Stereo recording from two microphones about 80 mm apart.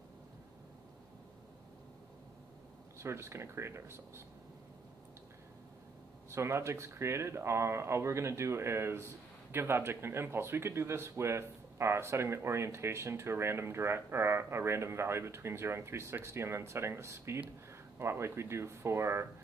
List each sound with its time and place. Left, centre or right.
3.0 s speech: right
6.3 s speech: right